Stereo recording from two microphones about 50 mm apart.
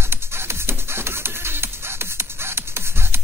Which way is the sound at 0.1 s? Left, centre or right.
Right.